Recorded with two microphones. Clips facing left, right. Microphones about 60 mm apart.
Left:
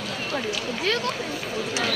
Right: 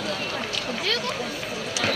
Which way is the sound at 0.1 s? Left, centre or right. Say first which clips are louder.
Even; centre.